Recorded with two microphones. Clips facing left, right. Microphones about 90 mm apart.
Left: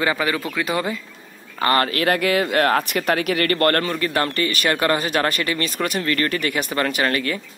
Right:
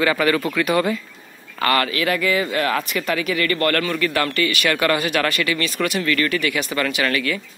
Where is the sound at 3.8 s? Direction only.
30° left (ahead or behind).